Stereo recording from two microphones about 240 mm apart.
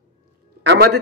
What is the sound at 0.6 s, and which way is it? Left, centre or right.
Speech, right.